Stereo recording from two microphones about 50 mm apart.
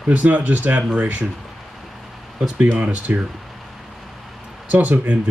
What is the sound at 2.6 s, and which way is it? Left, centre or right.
Speech, right.